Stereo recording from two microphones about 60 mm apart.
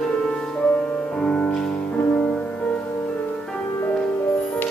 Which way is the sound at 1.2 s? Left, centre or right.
Left.